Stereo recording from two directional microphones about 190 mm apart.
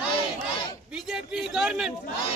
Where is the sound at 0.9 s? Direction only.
5° right (ahead or behind).